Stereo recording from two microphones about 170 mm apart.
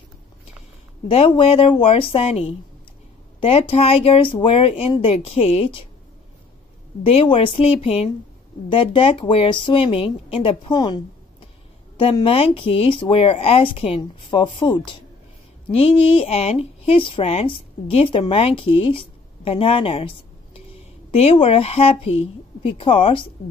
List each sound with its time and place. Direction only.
1.0 s speech: 35° left (ahead or behind)
7.0 s speech: 35° left (ahead or behind)
12.0 s speech: 35° left (ahead or behind)
15.8 s speech: 30° left (ahead or behind)